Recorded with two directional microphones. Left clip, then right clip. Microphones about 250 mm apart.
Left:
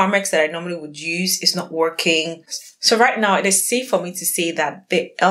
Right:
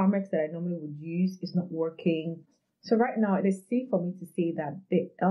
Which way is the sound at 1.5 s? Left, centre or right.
Centre.